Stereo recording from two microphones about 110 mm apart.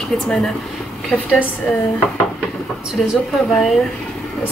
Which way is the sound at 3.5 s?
5° left (ahead or behind).